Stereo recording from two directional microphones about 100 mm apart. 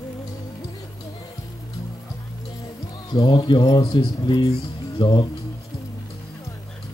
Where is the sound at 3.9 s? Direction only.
50° left (ahead or behind).